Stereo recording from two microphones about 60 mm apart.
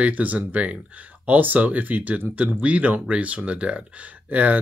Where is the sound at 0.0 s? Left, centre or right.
Right.